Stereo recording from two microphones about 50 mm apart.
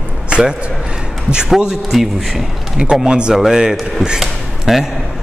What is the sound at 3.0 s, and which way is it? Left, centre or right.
Speech, centre.